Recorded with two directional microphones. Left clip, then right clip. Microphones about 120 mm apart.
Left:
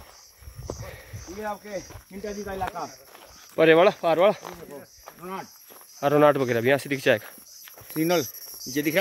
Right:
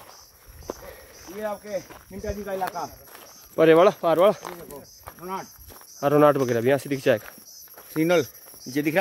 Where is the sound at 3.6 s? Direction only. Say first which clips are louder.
Right 1 dB; 20° right (ahead or behind).